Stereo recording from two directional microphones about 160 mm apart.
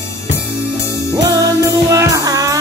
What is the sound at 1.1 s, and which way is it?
Music, 20° right (ahead or behind).